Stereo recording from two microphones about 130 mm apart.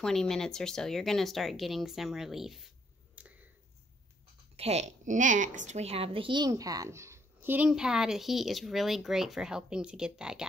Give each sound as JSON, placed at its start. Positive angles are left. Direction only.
{"t": 0.0, "sound": "speech", "side_deg": 5}
{"t": 3.2, "sound": "finger snapping", "side_deg": -10}
{"t": 4.6, "sound": "speech", "side_deg": -55}